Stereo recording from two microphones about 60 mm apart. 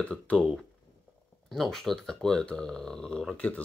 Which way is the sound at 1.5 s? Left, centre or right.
Centre.